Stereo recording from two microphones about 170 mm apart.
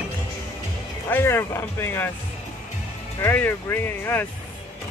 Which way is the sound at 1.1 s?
15° left (ahead or behind).